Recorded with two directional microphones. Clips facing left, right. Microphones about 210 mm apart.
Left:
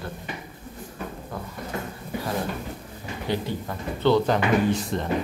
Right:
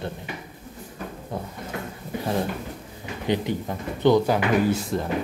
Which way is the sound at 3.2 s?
20° right (ahead or behind).